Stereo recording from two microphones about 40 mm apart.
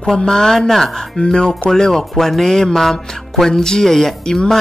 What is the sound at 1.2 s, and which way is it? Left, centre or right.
Speech, left.